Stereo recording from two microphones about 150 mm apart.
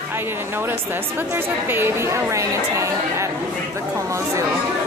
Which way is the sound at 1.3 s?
15° right (ahead or behind).